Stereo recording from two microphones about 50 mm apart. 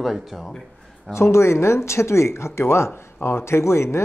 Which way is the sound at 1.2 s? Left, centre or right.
Left.